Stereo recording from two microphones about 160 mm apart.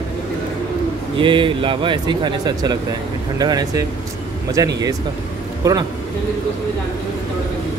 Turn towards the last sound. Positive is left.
turn(degrees=-20)  # may be behind; listen again after turning